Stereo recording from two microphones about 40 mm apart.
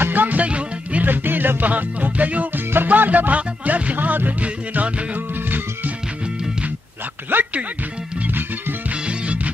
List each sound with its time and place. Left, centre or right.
0.0 s music: right
0.4 s music: right
1.0 s music: right
7.3 s music: right
9.0 s music: right